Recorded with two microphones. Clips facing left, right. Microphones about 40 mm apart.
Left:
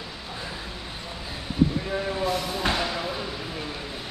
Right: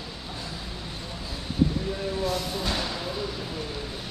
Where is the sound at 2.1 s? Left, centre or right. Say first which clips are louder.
Left 1 dB; left.